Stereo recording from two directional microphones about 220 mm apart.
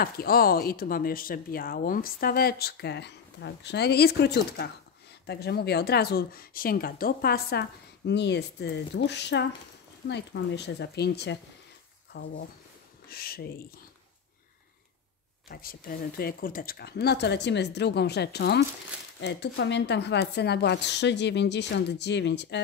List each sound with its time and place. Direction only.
0.0 s speech: 45° left (ahead or behind)
15.4 s speech: 40° left (ahead or behind)